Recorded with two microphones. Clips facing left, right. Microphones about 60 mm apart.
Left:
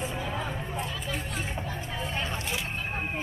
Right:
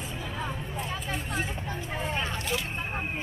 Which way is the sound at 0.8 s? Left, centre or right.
Right.